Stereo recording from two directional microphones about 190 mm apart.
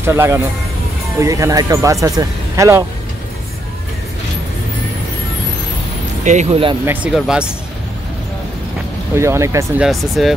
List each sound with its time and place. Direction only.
0.0 s speech: 15° right (ahead or behind)
6.2 s speech: 35° right (ahead or behind)
6.9 s speech: 5° right (ahead or behind)
9.1 s speech: 15° right (ahead or behind)
9.8 s speech: centre (ahead or behind)